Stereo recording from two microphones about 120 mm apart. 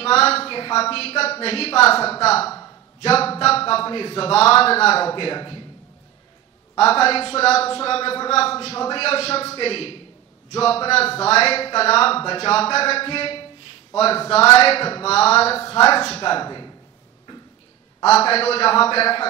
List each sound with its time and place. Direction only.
0.0 s a woman's voice: 55° left (ahead or behind)
6.8 s a man's voice: 55° left (ahead or behind)
16.2 s speech: 40° left (ahead or behind)
18.2 s a man's voice: 55° left (ahead or behind)